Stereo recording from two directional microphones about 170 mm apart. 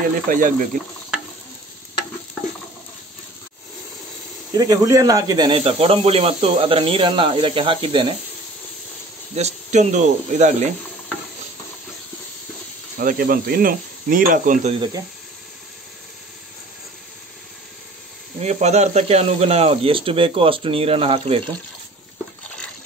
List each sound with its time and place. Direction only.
0.3 s speech: 50° right (ahead or behind)
4.6 s speech: 20° right (ahead or behind)
9.3 s speech: 40° right (ahead or behind)
13.0 s speech: 55° right (ahead or behind)
14.8 s speech: 20° right (ahead or behind)
18.4 s speech: 40° right (ahead or behind)